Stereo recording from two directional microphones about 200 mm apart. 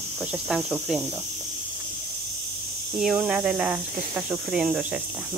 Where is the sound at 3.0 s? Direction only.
5° right (ahead or behind).